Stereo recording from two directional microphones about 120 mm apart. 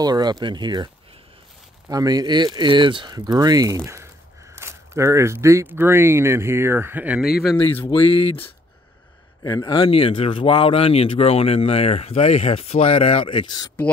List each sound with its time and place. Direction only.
0.0 s speech: 35° right (ahead or behind)
1.9 s speech: 30° right (ahead or behind); by 7.2 s 15° right (ahead or behind)
7.8 s speech: 50° left (ahead or behind)
9.4 s speech: 35° left (ahead or behind)